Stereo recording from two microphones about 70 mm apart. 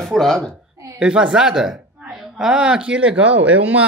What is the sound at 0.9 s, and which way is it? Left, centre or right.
Speech, centre.